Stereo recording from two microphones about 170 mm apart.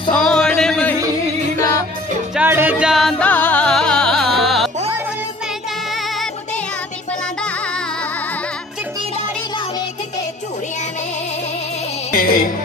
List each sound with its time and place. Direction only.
0.1 s a sound: 5° left (ahead or behind)
2.3 s music: 10° right (ahead or behind)
12.1 s music: 55° left (ahead or behind)